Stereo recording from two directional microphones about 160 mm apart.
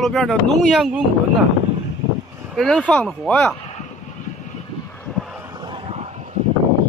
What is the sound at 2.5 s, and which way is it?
Speech, 5° left (ahead or behind).